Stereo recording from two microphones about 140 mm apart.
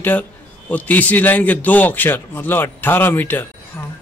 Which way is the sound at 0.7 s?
10° left (ahead or behind).